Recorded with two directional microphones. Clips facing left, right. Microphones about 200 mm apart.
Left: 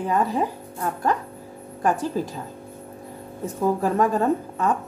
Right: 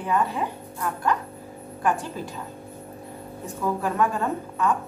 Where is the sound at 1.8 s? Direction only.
40° left (ahead or behind).